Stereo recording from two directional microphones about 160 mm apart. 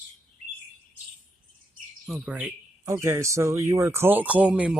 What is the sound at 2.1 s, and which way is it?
Speech, 10° right (ahead or behind).